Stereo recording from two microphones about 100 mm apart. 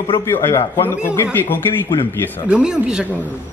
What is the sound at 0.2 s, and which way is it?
Speech, 25° left (ahead or behind).